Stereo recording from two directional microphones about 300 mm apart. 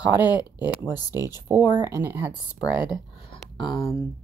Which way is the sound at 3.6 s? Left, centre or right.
Centre.